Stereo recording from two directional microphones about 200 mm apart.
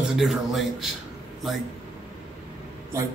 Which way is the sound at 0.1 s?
Centre (ahead or behind).